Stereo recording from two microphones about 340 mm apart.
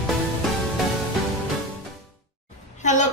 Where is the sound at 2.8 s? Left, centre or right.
Left.